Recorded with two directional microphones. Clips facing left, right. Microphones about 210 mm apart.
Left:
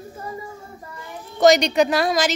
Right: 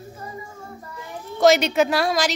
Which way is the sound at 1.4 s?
Centre (ahead or behind).